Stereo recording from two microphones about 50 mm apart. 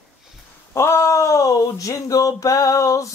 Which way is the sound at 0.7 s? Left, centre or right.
Left.